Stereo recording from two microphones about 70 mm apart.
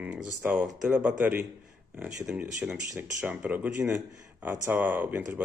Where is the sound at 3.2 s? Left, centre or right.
Right.